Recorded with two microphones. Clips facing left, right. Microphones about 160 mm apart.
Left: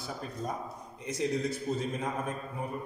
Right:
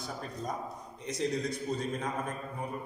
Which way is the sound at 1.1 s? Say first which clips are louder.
Left 1 dB; 5° left (ahead or behind).